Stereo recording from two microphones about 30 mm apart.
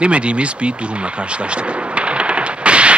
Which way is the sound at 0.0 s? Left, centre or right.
Right.